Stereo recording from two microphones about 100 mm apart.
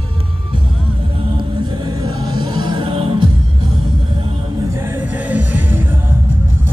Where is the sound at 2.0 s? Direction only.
50° right (ahead or behind).